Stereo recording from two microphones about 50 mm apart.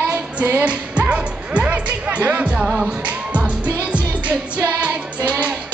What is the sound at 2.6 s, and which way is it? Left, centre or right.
Music, centre.